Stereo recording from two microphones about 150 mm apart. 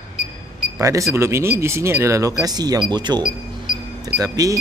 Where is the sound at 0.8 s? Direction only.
20° right (ahead or behind).